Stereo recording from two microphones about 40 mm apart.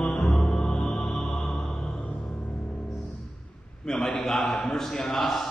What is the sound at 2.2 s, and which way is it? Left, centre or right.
Music, left.